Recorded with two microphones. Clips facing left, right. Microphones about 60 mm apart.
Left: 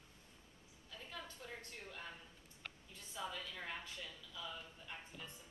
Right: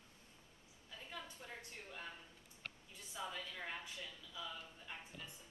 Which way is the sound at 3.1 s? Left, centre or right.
Centre.